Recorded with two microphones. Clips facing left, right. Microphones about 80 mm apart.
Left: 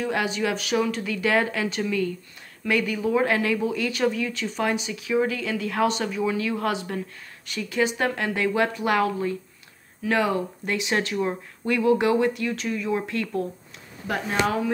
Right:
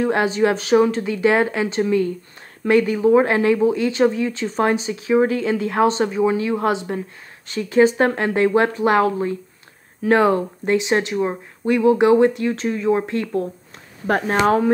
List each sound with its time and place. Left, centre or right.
0.0 s speech: right
14.0 s speech: right